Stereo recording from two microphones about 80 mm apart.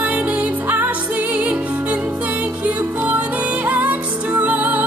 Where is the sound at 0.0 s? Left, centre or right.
Centre.